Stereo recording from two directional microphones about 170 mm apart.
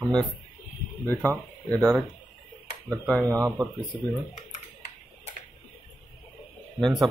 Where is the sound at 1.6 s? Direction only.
10° left (ahead or behind).